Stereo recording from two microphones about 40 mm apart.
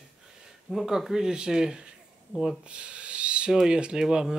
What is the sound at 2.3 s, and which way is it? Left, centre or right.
Speech, right.